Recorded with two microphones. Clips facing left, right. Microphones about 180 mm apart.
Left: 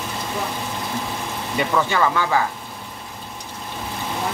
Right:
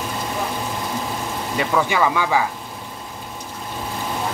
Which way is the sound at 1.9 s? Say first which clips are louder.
Right 1 dB; 10° right (ahead or behind).